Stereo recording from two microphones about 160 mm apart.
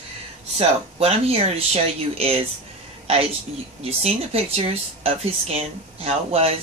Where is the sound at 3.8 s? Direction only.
40° right (ahead or behind).